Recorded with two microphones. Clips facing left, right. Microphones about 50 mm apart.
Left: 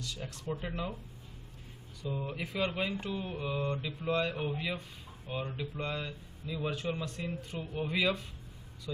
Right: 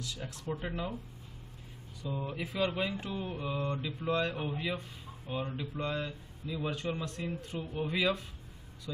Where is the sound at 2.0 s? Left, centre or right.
Centre.